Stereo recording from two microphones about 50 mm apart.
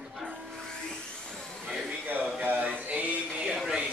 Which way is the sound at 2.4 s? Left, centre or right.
Right.